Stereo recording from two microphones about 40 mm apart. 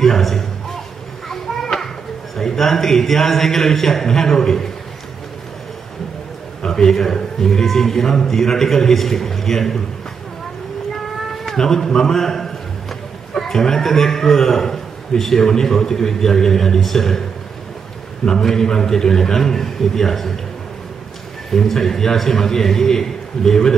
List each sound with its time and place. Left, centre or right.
0.0 s a sound: centre
1.3 s children playing: centre
2.3 s a man's voice: centre
6.6 s a man's voice: centre
11.4 s a man's voice: centre
18.2 s a man's voice: centre
21.5 s a man's voice: centre